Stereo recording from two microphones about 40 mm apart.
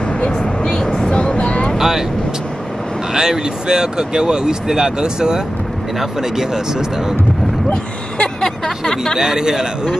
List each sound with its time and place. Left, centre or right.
0.2 s vehicle: centre
1.8 s speech: centre
3.1 s speech: centre
7.7 s a sound: left
8.5 s speech: centre
9.2 s speech: centre